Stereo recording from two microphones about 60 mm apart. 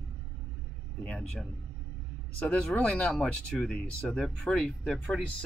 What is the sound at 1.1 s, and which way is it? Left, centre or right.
Speech, centre.